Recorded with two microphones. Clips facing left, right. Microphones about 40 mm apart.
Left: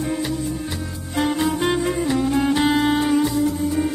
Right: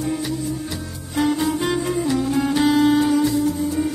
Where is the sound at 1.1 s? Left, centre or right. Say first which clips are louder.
Right 1 dB; left.